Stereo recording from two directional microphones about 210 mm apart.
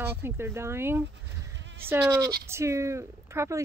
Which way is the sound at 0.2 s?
10° right (ahead or behind).